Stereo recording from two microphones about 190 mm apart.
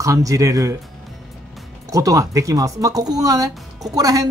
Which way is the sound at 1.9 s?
15° right (ahead or behind).